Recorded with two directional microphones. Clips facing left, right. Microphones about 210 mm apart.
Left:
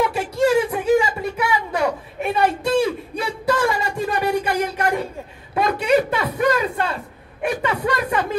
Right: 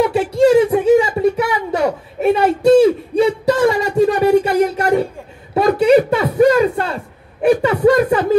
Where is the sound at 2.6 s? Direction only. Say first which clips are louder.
Right 10 dB; 25° right (ahead or behind).